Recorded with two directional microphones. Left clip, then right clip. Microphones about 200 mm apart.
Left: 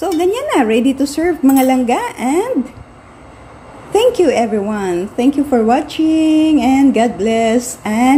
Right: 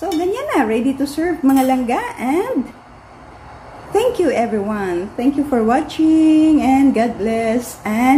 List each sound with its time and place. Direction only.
0.0 s speech: 30° left (ahead or behind)
3.9 s speech: 20° left (ahead or behind)
5.5 s mantra: 15° left (ahead or behind)